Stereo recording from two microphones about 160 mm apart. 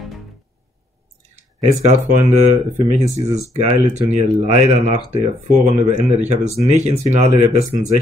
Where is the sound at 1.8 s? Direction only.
45° right (ahead or behind).